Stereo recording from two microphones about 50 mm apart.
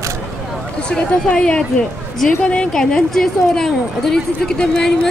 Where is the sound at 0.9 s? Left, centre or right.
Left.